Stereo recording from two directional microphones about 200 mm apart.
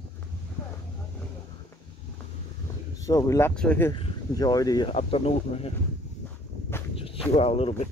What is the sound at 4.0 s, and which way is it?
Speech, 20° left (ahead or behind).